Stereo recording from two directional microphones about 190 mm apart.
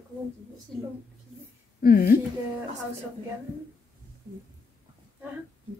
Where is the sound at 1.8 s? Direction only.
50° left (ahead or behind).